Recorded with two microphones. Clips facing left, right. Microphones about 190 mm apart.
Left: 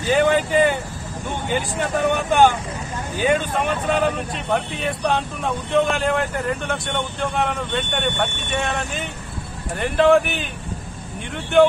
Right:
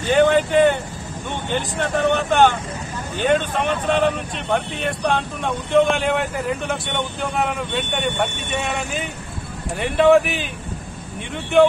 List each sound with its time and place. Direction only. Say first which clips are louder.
0.0 s speech: right 2 dB; 5° left (ahead or behind)